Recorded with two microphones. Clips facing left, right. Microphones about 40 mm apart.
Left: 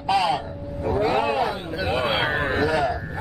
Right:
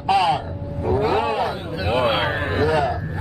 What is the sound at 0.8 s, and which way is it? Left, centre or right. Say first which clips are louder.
A man's voice: right 2 dB; centre.